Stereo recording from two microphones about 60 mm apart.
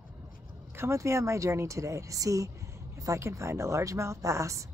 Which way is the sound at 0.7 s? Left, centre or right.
Right.